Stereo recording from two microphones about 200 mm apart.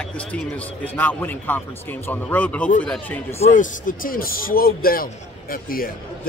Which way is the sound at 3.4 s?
40° left (ahead or behind).